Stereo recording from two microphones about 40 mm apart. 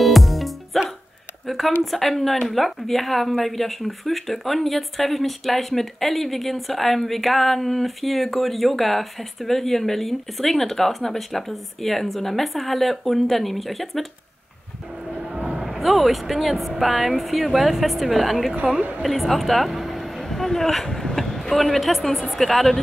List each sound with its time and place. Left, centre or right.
0.0 s music: centre
1.4 s a sound: centre
1.8 s speech: centre
15.4 s a sound: centre
15.8 s speech: centre
18.8 s a woman's voice: right
19.0 s a woman's voice: centre